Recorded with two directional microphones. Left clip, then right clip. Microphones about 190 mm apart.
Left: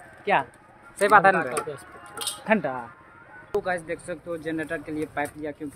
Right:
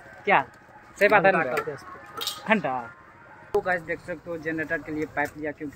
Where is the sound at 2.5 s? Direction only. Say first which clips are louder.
Even; 15° left (ahead or behind).